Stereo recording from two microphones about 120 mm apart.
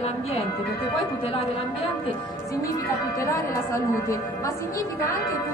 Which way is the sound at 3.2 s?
25° left (ahead or behind).